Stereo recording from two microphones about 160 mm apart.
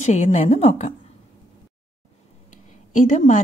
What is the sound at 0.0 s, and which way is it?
Speech, 45° left (ahead or behind).